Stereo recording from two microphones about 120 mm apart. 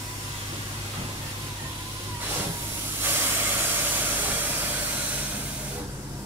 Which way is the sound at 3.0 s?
15° right (ahead or behind).